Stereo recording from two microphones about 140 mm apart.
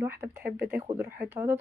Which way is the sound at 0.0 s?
15° right (ahead or behind).